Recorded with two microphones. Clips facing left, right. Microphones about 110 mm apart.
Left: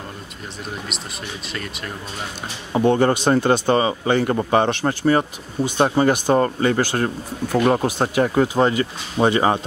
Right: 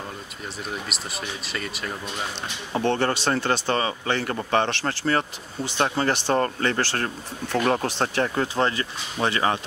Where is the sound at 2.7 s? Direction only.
15° left (ahead or behind).